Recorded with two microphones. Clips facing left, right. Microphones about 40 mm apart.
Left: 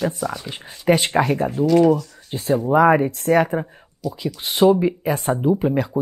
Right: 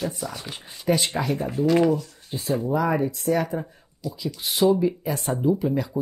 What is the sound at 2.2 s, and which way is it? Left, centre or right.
Speech, left.